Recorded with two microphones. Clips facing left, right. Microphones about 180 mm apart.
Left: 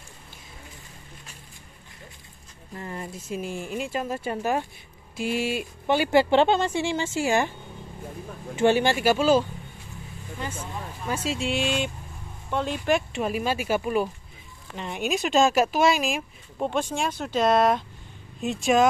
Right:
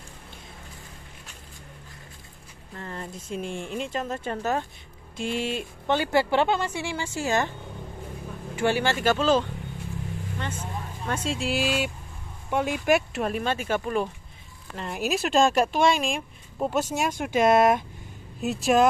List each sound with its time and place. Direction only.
2.7 s speech: 10° left (ahead or behind)
6.3 s a woman's voice: 25° left (ahead or behind)
7.2 s speech: 10° left (ahead or behind)
8.5 s speech: 20° left (ahead or behind)
11.1 s speech: 5° left (ahead or behind)